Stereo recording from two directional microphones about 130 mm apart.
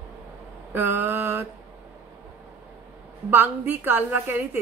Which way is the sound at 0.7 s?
15° right (ahead or behind).